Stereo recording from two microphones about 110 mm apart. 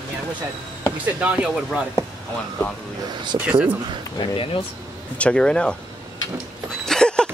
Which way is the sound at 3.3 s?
55° right (ahead or behind).